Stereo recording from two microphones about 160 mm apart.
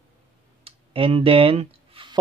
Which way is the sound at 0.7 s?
35° right (ahead or behind).